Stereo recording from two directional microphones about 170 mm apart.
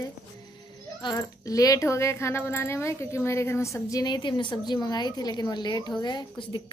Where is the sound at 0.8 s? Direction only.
20° left (ahead or behind).